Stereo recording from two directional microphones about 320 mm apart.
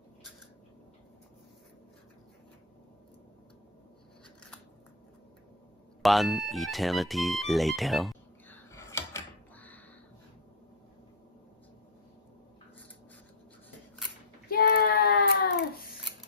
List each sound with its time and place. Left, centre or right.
6.0 s music: centre
14.5 s child singing: left